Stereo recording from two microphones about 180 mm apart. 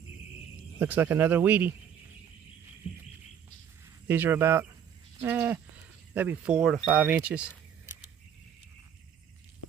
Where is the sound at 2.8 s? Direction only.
30° left (ahead or behind).